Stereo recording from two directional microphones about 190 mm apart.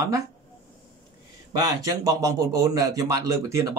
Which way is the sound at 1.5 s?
15° right (ahead or behind).